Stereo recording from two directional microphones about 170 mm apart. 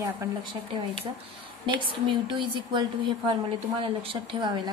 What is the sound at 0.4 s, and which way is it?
A woman's voice, 30° right (ahead or behind).